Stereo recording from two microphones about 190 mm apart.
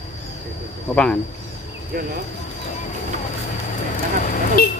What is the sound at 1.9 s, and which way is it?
Speech, 50° right (ahead or behind).